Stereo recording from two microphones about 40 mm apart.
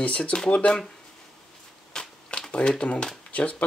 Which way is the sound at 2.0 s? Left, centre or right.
Centre.